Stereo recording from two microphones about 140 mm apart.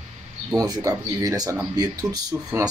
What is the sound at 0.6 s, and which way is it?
Speech, 25° right (ahead or behind).